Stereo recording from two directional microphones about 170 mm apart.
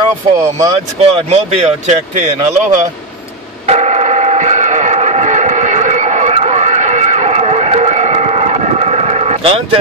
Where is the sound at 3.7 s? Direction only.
40° right (ahead or behind).